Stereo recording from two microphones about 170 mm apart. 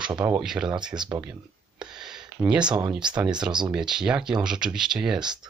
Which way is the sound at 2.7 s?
25° right (ahead or behind).